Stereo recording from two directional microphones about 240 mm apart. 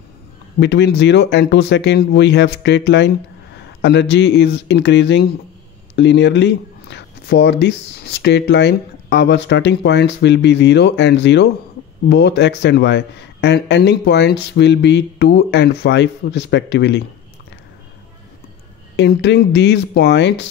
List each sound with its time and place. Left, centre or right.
0.6 s speech: left
18.9 s speech: left